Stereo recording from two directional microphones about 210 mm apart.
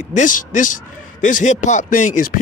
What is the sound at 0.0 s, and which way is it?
Speech, 35° left (ahead or behind).